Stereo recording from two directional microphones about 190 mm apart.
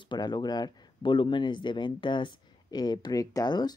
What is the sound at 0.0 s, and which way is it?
Speech, 25° left (ahead or behind).